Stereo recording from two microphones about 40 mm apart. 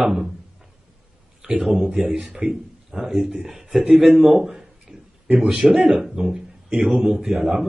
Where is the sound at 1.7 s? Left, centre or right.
Centre.